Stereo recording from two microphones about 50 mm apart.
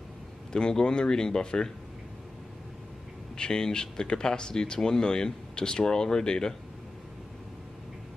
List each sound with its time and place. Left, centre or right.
0.5 s speech: centre
3.3 s speech: centre